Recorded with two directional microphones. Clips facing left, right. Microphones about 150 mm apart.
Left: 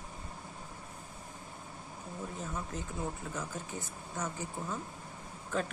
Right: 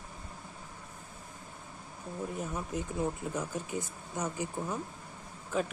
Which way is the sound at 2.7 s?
15° right (ahead or behind).